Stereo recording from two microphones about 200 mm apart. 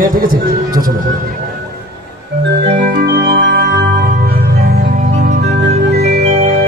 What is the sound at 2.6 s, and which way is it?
Music, 55° right (ahead or behind).